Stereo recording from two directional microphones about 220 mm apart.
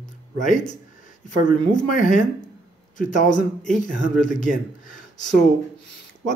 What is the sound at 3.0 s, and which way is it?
A man's voice, 35° left (ahead or behind).